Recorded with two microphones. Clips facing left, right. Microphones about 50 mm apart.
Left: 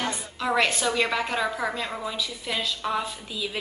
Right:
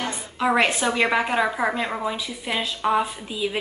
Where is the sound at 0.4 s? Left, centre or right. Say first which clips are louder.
Right 4 dB; right.